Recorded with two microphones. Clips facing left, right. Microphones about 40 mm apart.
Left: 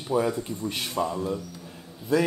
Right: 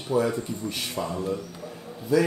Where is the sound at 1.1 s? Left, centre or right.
Centre.